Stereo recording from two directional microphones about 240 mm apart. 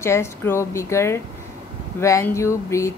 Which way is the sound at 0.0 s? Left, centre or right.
Centre.